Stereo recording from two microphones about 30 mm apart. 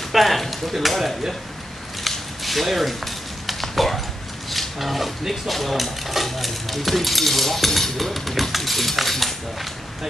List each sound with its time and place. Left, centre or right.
0.1 s speech: centre
2.0 s a sound: centre
4.5 s roaring cats: centre
5.3 s speech: centre